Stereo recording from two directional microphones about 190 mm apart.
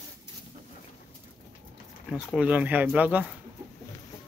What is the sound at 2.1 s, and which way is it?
Speech, 5° right (ahead or behind).